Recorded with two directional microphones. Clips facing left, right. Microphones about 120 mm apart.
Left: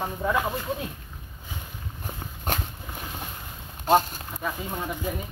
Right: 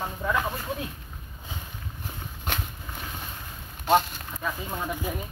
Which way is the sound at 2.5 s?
45° left (ahead or behind).